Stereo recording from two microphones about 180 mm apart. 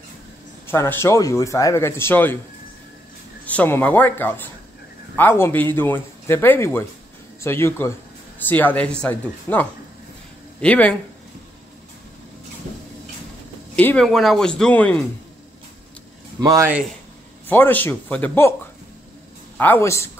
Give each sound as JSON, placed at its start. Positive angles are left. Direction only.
{"t": 0.7, "sound": "a man's voice", "side_deg": 15}
{"t": 3.4, "sound": "a man's voice", "side_deg": 10}
{"t": 13.7, "sound": "speech", "side_deg": 5}
{"t": 16.3, "sound": "speech", "side_deg": -20}
{"t": 17.5, "sound": "a man's voice", "side_deg": 10}
{"t": 19.5, "sound": "a man's voice", "side_deg": 10}